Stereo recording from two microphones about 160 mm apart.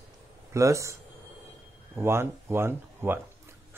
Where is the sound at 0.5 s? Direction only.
20° right (ahead or behind).